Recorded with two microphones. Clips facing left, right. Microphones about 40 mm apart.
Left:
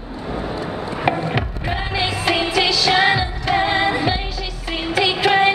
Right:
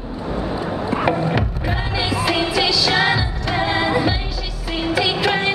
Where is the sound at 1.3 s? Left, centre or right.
Centre.